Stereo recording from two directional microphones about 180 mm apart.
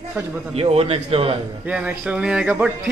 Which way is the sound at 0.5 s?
35° right (ahead or behind).